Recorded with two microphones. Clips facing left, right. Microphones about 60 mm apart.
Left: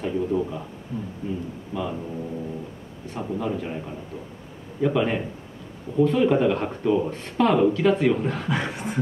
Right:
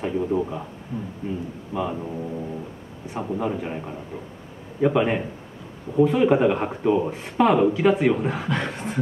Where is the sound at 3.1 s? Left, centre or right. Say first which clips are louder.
Right 2 dB; centre.